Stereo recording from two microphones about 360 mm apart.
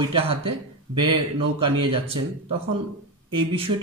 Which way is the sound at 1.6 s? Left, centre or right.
Centre.